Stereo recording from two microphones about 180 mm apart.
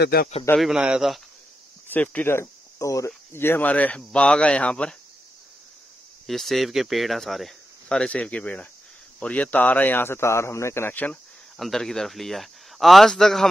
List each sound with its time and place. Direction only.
0.0 s a man's voice: 60° left (ahead or behind)
0.6 s speech: 5° right (ahead or behind)
1.9 s speech: 10° left (ahead or behind)
6.2 s speech: centre (ahead or behind)